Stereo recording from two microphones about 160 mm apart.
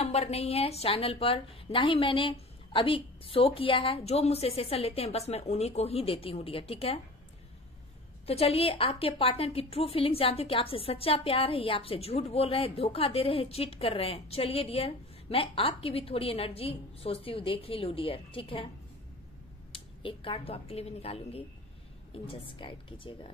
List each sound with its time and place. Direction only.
0.0 s a woman's voice: 40° left (ahead or behind)
8.3 s a woman's voice: 40° left (ahead or behind)
19.7 s a woman's voice: 35° left (ahead or behind)